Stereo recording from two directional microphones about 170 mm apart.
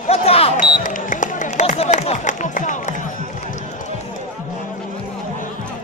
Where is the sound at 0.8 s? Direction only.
50° left (ahead or behind).